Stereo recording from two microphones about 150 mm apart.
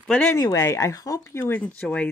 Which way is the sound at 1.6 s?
10° left (ahead or behind).